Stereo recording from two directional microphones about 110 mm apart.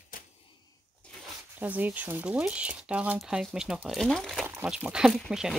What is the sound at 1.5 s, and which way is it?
Speech, 15° right (ahead or behind).